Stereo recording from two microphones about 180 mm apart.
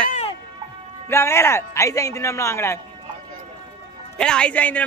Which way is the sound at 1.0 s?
15° left (ahead or behind).